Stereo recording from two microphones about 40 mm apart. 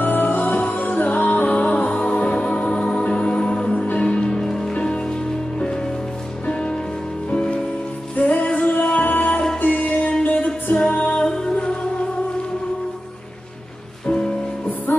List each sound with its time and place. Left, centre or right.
0.0 s music: left
1.5 s music: left
3.7 s music: left
4.1 s music: left
6.4 s music: left
8.2 s music: left
11.2 s music: left
14.9 s music: left